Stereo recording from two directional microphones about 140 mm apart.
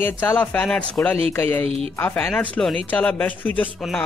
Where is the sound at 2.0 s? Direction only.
15° left (ahead or behind).